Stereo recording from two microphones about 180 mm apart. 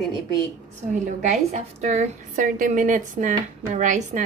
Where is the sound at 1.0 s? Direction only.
40° right (ahead or behind).